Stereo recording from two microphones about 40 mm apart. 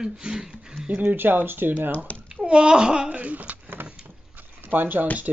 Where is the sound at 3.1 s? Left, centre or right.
Right.